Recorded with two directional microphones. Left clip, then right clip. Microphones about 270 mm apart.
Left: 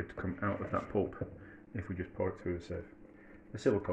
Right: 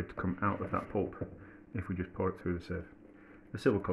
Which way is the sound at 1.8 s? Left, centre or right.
Right.